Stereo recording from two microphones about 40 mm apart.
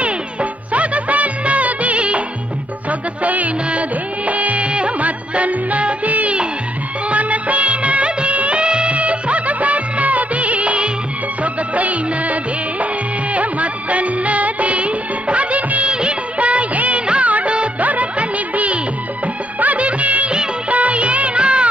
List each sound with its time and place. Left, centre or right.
0.0 s music: right
4.3 s music of bollywood: right
11.4 s music: right
13.3 s music of bollywood: right
20.7 s music: right